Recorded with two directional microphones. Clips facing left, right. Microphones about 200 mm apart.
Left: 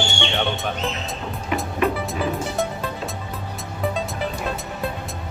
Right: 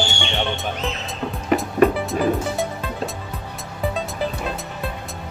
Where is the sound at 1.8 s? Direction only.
Centre (ahead or behind).